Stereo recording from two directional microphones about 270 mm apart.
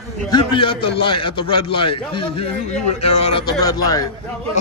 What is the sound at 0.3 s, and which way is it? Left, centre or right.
A man's voice, centre.